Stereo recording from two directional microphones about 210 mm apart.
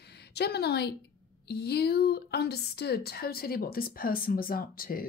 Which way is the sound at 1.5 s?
50° left (ahead or behind).